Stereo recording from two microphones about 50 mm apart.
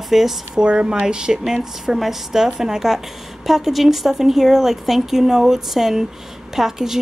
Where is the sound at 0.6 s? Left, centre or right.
Centre.